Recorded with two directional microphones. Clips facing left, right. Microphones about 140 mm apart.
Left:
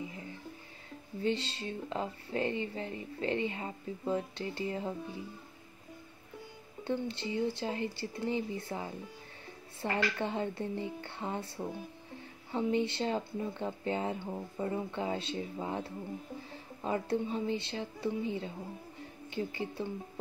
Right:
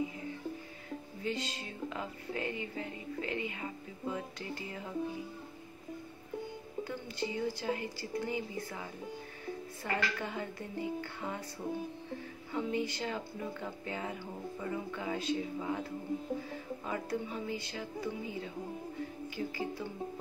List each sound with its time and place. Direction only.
1.2 s speech: 30° left (ahead or behind)
6.8 s speech: 25° left (ahead or behind)